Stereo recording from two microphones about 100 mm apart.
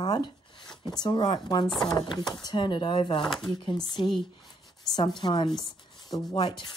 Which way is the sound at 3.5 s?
50° left (ahead or behind).